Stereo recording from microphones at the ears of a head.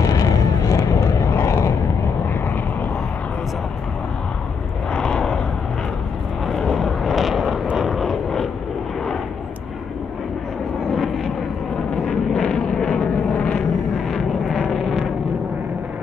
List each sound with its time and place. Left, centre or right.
0.0 s vehicle: left
4.9 s vehicle: left
6.6 s vehicle: left
11.9 s vehicle: left